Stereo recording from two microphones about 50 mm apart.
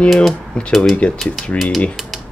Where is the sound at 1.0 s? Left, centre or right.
Left.